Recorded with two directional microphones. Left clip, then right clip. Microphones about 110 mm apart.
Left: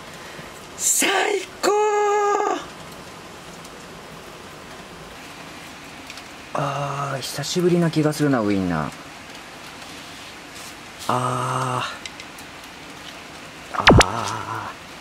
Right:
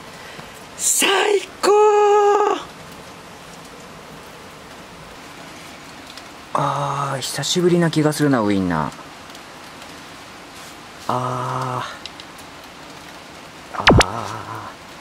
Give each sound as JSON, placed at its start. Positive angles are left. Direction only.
{"t": 0.7, "sound": "wail", "side_deg": -15}
{"t": 6.5, "sound": "speech", "side_deg": -20}
{"t": 11.1, "sound": "mantra", "side_deg": 5}
{"t": 13.8, "sound": "a sound", "side_deg": 0}